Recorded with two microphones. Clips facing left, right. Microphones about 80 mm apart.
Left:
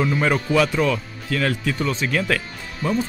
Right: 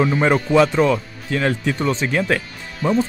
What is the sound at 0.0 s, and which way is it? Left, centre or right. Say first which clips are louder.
Speech: right 4 dB; right.